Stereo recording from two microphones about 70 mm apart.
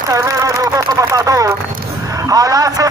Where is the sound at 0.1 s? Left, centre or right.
Right.